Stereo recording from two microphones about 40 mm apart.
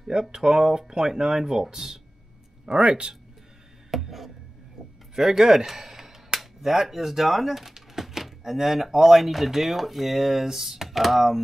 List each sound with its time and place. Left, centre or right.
0.1 s speech: centre
2.6 s speech: right
4.0 s a sound: centre
5.1 s speech: centre